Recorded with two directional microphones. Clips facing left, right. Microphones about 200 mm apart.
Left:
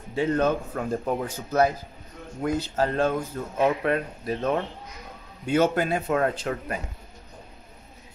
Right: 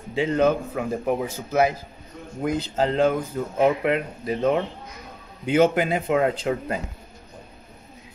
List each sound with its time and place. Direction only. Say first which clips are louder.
0.1 s speech: right 3 dB; 10° right (ahead or behind)